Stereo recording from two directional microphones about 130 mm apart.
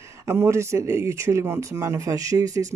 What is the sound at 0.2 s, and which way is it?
Speech, 20° right (ahead or behind).